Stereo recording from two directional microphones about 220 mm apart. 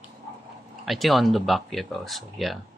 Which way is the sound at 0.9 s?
Centre (ahead or behind).